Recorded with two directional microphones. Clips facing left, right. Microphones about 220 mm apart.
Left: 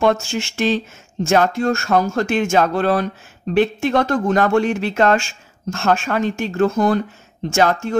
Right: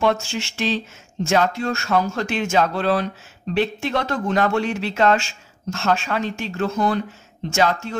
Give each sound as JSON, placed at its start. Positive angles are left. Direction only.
{"t": 0.0, "sound": "speech", "side_deg": 45}